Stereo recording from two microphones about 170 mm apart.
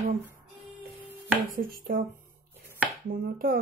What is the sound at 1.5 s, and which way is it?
Speech, 55° right (ahead or behind).